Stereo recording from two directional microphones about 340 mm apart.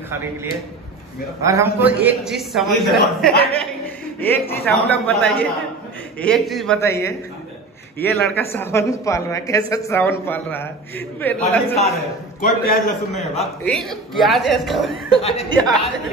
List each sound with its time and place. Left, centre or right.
1.4 s a man's voice: centre
12.4 s a man's voice: left
13.7 s a man's voice: centre
15.2 s speech: centre